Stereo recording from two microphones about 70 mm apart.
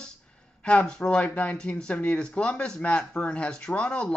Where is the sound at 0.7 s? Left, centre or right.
Centre.